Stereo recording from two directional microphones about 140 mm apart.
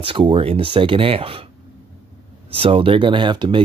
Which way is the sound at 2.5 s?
40° right (ahead or behind).